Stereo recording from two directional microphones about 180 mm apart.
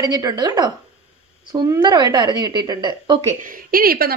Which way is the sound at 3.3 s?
50° right (ahead or behind).